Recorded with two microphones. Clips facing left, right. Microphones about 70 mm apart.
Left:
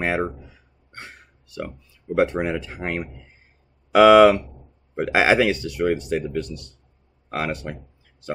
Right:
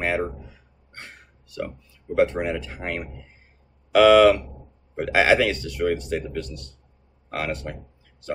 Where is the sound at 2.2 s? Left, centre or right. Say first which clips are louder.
Even; centre.